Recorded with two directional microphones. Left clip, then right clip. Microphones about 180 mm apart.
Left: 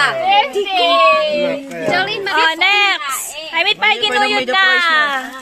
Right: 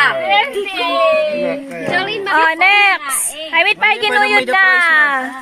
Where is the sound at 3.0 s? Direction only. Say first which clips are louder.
Even; 45° left (ahead or behind).